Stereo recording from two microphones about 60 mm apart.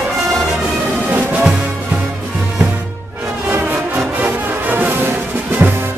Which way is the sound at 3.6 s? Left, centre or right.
Right.